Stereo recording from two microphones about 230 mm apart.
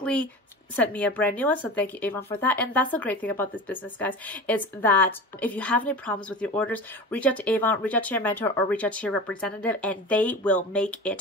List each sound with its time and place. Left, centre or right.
0.0 s a woman's voice: centre